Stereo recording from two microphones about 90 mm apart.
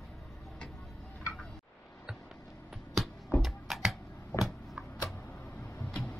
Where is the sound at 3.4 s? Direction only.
5° right (ahead or behind).